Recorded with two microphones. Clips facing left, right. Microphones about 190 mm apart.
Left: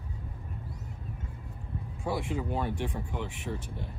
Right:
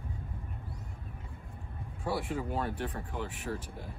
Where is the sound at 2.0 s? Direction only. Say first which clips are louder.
Left 1 dB; 5° right (ahead or behind).